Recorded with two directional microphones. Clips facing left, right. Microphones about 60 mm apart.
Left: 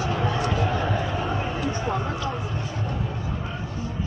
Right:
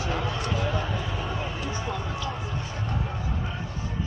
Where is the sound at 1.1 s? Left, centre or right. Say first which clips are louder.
Left 5 dB; left.